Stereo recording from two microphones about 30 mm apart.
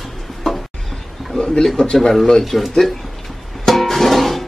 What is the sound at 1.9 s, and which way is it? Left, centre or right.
Speech, centre.